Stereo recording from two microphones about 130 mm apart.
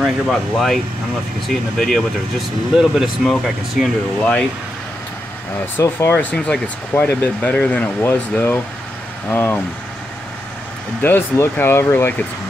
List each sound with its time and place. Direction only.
0.0 s speech: centre (ahead or behind)
5.8 s speech: 15° left (ahead or behind)
11.0 s speech: 15° left (ahead or behind)